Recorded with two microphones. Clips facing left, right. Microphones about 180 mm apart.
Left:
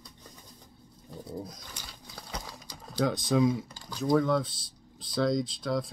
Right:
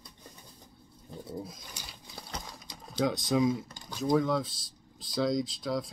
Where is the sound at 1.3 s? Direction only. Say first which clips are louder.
Left 1 dB; 5° right (ahead or behind).